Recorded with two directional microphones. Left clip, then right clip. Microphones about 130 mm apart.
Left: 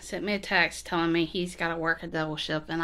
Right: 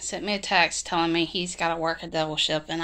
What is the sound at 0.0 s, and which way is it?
A woman's voice, 25° left (ahead or behind).